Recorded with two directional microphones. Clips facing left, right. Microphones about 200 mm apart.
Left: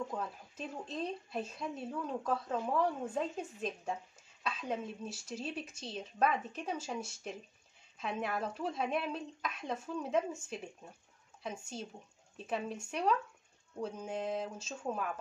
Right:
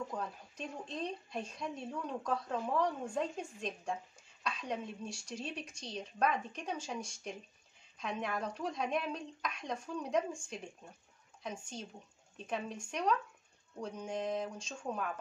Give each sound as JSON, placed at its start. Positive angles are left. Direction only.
{"t": 0.1, "sound": "speech", "side_deg": 5}